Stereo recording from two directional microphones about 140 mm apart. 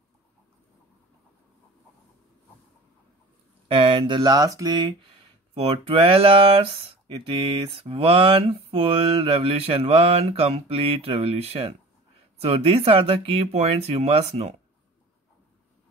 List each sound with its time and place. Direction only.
3.6 s speech: 40° right (ahead or behind)
5.5 s speech: 40° right (ahead or behind)
7.2 s mantra: 40° right (ahead or behind)